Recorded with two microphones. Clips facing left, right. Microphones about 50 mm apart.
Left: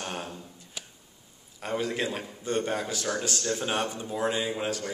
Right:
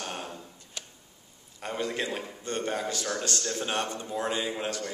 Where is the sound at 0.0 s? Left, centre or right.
Left.